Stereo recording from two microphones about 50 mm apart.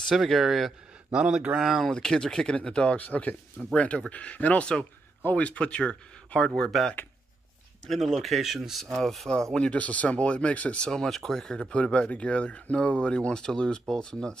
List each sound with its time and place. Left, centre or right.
0.3 s speech: centre
1.1 s speech: right
1.9 s speech: centre
7.8 s speech: centre
9.3 s speech: centre
9.7 s speech: left
10.8 s speech: centre